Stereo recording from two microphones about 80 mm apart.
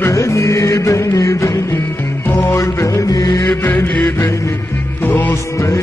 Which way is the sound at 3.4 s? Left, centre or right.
Left.